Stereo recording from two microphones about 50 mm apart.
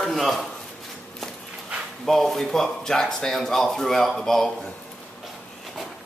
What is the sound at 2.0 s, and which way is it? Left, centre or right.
Speech, centre.